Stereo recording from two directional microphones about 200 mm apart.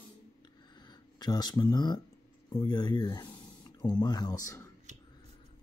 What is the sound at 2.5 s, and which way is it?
Speech, 20° left (ahead or behind).